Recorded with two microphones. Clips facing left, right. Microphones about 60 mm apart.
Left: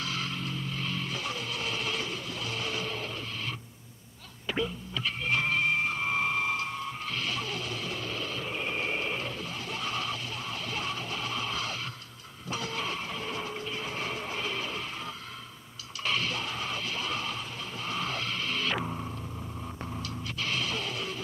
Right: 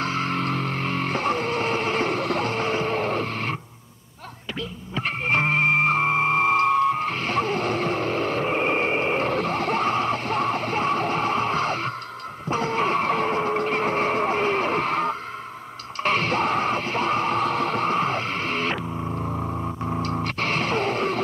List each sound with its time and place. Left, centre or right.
0.0 s music: right
0.4 s music: right
4.9 s music: right
12.4 s vehicle: right
16.0 s music: right
19.2 s a sound: right
20.2 s music: right